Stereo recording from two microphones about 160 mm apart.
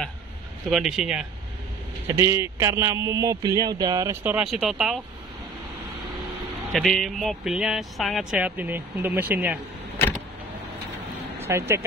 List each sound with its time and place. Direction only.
0.7 s speech: centre (ahead or behind)
2.0 s speech: 15° right (ahead or behind)
4.2 s speech: 10° right (ahead or behind)
6.7 s speech: centre (ahead or behind)
11.4 s speech: 15° right (ahead or behind)